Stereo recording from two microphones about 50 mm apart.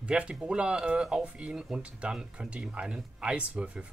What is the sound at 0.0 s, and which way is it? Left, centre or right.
Speech, right.